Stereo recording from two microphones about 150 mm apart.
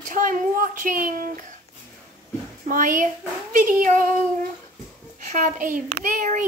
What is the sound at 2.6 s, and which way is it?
Speech, 65° right (ahead or behind).